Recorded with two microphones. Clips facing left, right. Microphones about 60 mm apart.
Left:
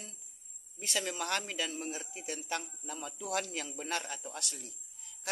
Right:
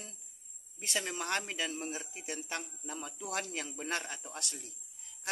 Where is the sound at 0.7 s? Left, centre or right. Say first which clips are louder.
Left 1 dB; right.